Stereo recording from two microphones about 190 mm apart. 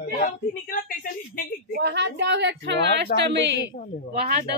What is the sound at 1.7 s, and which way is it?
Speech, 65° right (ahead or behind).